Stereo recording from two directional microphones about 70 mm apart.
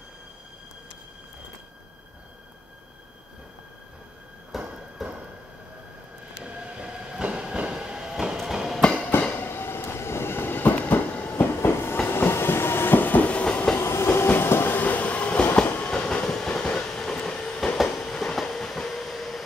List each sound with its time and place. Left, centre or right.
4.5 s train: centre
6.4 s train: centre
9.4 s train: left; by 13.7 s centre
13.7 s train: left; by 19.4 s centre